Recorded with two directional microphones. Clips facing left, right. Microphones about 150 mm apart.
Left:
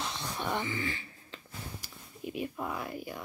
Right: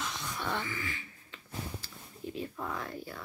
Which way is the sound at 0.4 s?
20° left (ahead or behind).